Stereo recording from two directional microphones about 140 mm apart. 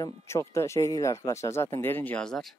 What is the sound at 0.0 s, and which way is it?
Speech, 20° left (ahead or behind).